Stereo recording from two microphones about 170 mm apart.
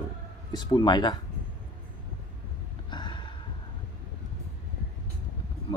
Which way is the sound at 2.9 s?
25° left (ahead or behind).